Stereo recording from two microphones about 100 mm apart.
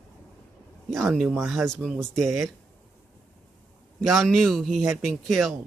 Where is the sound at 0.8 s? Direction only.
Centre (ahead or behind).